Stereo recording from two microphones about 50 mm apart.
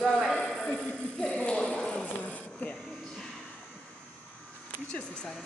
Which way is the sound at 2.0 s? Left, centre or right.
Left.